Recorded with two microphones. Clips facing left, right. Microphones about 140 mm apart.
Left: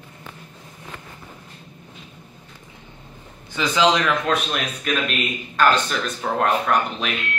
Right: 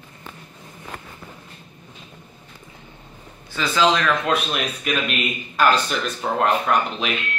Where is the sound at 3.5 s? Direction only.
20° left (ahead or behind).